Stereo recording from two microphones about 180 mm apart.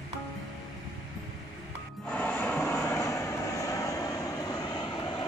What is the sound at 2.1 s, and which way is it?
Vehicle, 10° left (ahead or behind).